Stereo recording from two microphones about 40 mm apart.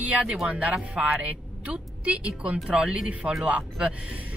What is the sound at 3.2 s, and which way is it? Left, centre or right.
Speech, right.